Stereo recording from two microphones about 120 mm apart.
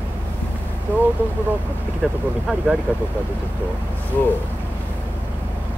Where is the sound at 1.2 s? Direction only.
15° right (ahead or behind).